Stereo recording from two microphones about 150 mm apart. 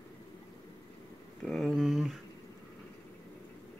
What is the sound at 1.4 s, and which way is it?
Speech, 5° left (ahead or behind).